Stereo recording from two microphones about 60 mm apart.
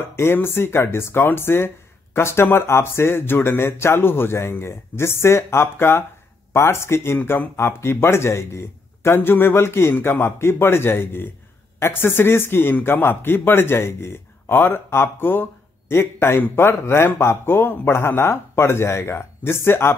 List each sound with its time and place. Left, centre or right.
0.1 s a man's voice: left